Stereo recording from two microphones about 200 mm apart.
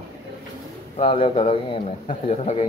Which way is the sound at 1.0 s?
25° left (ahead or behind).